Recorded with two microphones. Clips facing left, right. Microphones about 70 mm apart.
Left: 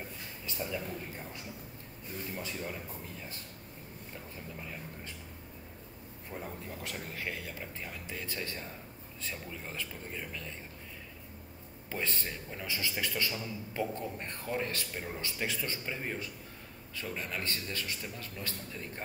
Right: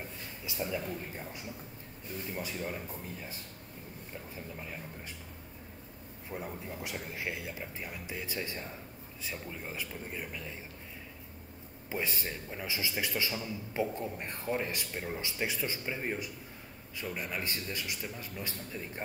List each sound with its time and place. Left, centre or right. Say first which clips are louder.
0.5 s a man's voice: right 2 dB; centre
6.3 s a man's voice: right 2 dB; centre
11.9 s a man's voice: right 1 dB; centre